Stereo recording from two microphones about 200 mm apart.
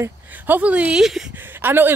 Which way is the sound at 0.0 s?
10° right (ahead or behind).